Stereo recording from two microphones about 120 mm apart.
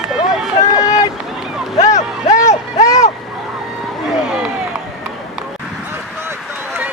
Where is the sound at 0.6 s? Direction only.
30° left (ahead or behind).